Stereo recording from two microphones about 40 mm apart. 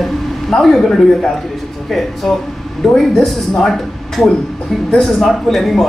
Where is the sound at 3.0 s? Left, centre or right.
Centre.